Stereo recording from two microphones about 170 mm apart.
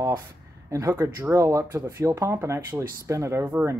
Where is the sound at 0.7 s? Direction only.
20° right (ahead or behind).